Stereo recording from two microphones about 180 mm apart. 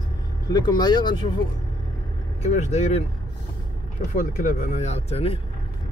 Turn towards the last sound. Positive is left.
turn(degrees=35)  # may be behind; listen again after turning